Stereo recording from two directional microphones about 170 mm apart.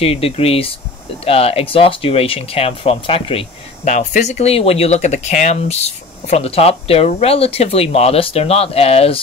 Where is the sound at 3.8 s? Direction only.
45° left (ahead or behind).